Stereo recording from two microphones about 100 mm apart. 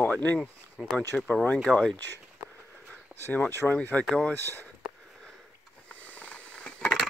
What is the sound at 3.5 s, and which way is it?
Speech, 20° left (ahead or behind).